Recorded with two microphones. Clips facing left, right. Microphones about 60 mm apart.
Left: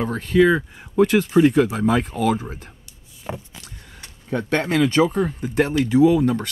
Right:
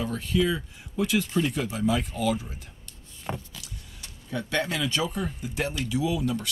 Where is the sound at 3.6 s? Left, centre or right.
Left.